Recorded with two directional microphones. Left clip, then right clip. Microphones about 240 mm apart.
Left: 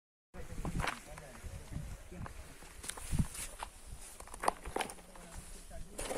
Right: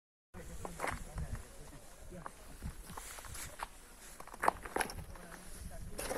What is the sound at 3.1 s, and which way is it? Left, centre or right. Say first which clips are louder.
Walk: left 4 dB; centre.